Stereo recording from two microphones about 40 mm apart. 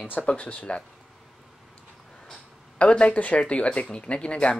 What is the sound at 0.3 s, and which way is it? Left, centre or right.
Speech, left.